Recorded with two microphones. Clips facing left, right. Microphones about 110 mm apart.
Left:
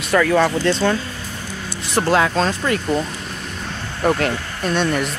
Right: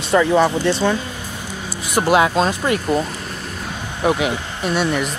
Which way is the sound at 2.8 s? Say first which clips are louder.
Right 1 dB; 5° right (ahead or behind).